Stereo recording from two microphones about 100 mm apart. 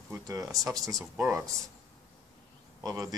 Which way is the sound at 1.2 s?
25° right (ahead or behind).